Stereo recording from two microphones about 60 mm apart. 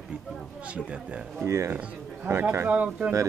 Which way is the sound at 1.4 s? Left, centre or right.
Right.